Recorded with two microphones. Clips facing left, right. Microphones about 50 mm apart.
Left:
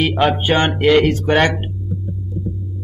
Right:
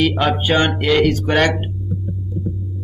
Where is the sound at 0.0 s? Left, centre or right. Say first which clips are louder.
Left 1 dB; centre.